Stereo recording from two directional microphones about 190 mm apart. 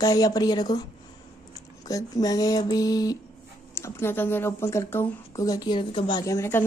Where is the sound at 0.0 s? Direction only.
20° left (ahead or behind).